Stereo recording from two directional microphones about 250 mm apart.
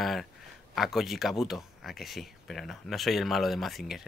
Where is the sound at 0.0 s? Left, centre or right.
Centre.